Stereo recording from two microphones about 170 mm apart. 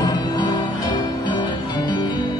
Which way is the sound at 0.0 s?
25° left (ahead or behind).